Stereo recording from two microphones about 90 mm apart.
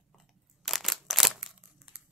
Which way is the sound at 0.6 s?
Centre (ahead or behind).